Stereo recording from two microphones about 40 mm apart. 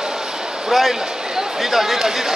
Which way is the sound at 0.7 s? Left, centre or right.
Centre.